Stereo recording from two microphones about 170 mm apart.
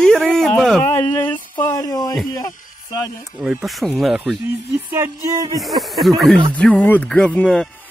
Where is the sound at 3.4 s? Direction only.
5° right (ahead or behind).